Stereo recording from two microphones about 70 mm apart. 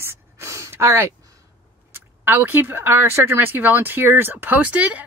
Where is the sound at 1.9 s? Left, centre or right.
Right.